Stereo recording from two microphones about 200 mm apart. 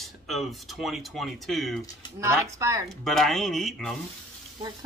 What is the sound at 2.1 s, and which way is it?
Speech, 15° right (ahead or behind).